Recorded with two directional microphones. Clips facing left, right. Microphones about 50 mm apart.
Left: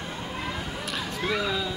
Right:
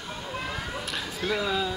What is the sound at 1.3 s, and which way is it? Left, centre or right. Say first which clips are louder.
Speech: right 1 dB; centre.